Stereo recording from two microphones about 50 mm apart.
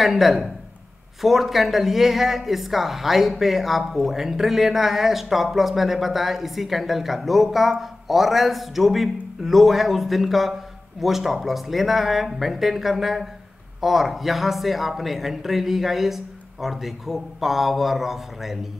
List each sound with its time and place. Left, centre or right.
0.0 s speech: centre